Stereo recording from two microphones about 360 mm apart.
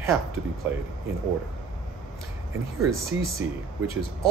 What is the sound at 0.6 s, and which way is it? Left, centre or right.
Speech, centre.